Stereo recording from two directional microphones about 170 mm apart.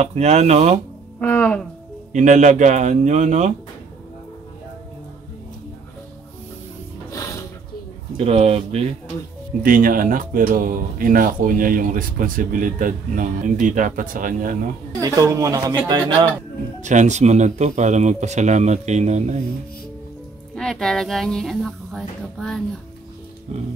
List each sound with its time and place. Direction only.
0.0 s speech: 40° right (ahead or behind)
1.2 s speech: 10° left (ahead or behind)
2.1 s speech: 45° right (ahead or behind)
7.1 s mechanisms: 20° left (ahead or behind)
8.2 s speech: 35° right (ahead or behind)
9.6 s speech: 55° right (ahead or behind)
15.0 s speech: 20° right (ahead or behind)
16.8 s speech: 45° right (ahead or behind)
20.5 s speech: centre (ahead or behind)